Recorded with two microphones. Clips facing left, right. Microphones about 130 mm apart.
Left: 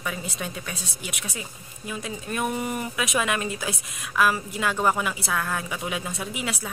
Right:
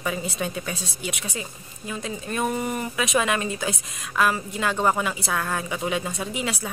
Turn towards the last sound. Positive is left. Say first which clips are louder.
# right 2 dB
turn(degrees=0)  # may be behind; listen again after turning